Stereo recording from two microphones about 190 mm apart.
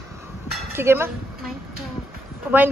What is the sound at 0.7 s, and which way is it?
Speech, 15° right (ahead or behind).